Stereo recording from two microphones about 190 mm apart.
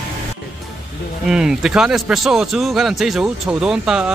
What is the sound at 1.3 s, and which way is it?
A man's voice, 5° right (ahead or behind).